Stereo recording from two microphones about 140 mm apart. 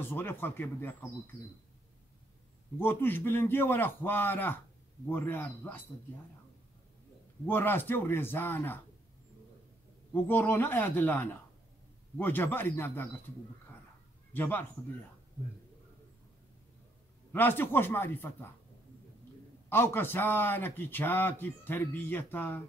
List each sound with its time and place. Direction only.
0.0 s speech: 15° left (ahead or behind)
2.8 s speech: 15° left (ahead or behind)
7.4 s speech: 15° left (ahead or behind)
10.1 s speech: 15° left (ahead or behind)
14.3 s speech: 15° left (ahead or behind)
17.3 s speech: 15° left (ahead or behind)
19.7 s speech: 15° left (ahead or behind)